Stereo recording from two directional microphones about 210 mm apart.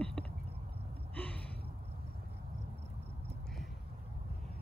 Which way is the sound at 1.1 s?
5° left (ahead or behind).